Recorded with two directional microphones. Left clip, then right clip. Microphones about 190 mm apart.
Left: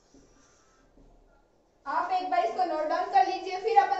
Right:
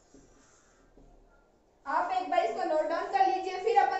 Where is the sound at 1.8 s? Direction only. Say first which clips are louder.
Left 1 dB; centre (ahead or behind).